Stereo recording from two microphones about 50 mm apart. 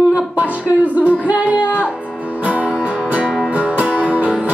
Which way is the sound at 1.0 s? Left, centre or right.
Right.